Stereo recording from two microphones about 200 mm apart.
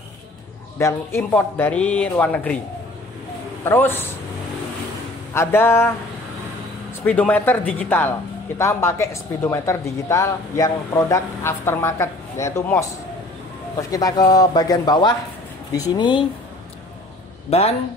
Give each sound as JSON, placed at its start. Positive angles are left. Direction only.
{"t": 0.7, "sound": "speech", "side_deg": 15}
{"t": 3.6, "sound": "speech", "side_deg": 10}
{"t": 5.3, "sound": "speech", "side_deg": 10}
{"t": 7.1, "sound": "a man's voice", "side_deg": 10}
{"t": 17.5, "sound": "speech", "side_deg": 30}